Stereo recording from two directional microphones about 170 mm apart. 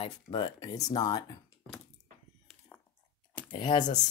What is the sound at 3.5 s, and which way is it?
Speech, 25° left (ahead or behind).